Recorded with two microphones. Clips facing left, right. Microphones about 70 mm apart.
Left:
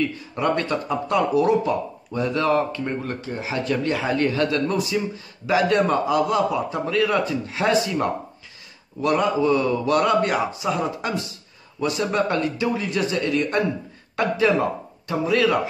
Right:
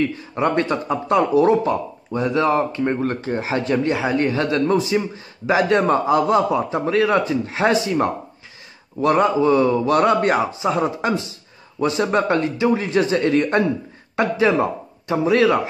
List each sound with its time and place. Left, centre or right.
0.0 s speech: right
3.0 s speech: right